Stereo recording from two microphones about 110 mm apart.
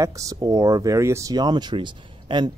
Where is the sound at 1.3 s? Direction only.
40° right (ahead or behind).